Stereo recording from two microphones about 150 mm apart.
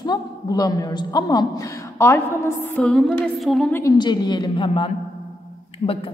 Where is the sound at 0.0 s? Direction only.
25° left (ahead or behind).